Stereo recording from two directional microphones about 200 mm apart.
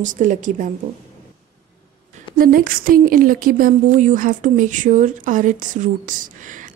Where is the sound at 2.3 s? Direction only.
45° right (ahead or behind).